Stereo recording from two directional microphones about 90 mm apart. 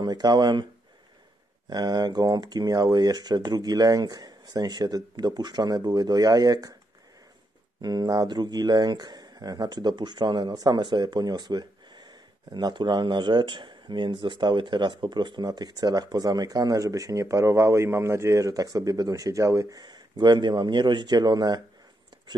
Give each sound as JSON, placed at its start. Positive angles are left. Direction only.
{"t": 0.0, "sound": "speech", "side_deg": -55}
{"t": 1.7, "sound": "speech", "side_deg": -50}
{"t": 7.8, "sound": "speech", "side_deg": -50}
{"t": 19.8, "sound": "speech", "side_deg": -55}